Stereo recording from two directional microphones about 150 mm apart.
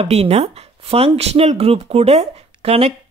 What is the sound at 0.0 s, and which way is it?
Speech, 45° right (ahead or behind).